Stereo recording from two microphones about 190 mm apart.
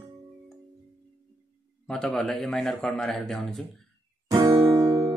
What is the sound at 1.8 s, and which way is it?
Speech, 5° left (ahead or behind).